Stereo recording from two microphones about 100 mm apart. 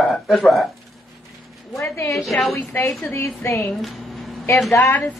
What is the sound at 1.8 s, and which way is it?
Speech, 30° left (ahead or behind).